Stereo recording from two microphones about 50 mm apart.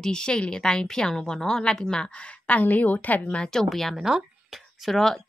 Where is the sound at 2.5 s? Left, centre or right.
Left.